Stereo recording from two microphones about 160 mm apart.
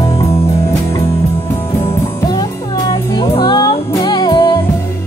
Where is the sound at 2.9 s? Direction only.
30° left (ahead or behind).